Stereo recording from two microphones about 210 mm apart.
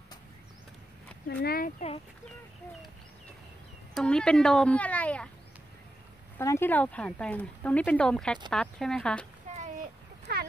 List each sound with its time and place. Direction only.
1.4 s speech: 45° left (ahead or behind)
3.9 s speech: 5° left (ahead or behind)
6.3 s speech: 10° left (ahead or behind)
10.3 s a sound: 50° right (ahead or behind)